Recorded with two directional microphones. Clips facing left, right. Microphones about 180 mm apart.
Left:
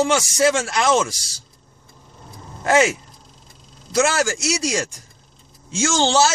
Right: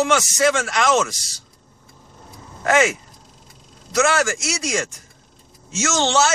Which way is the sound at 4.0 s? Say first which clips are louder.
Even; 30° left (ahead or behind).